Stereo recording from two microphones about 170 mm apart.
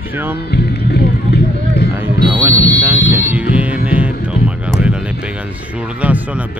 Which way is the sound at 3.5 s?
10° right (ahead or behind).